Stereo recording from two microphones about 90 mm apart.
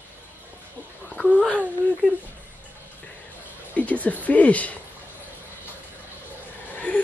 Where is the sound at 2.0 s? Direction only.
20° left (ahead or behind).